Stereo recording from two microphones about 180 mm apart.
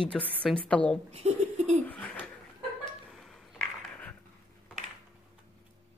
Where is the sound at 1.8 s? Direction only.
10° left (ahead or behind).